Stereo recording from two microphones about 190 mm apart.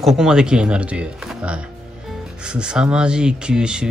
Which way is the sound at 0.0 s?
Centre (ahead or behind).